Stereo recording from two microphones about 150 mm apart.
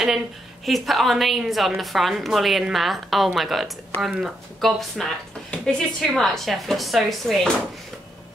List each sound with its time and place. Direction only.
0.7 s a woman's voice: centre (ahead or behind)